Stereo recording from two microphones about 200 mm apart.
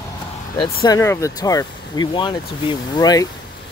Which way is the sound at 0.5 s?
20° left (ahead or behind).